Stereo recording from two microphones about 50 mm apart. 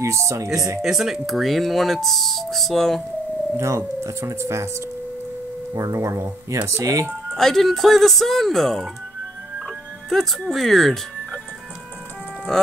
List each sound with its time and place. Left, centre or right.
0.0 s speech: right
0.8 s speech: centre
3.5 s speech: right
5.9 s speech: right
7.3 s speech: centre
9.7 s music: centre
10.5 s speech: centre
12.5 s sheep: centre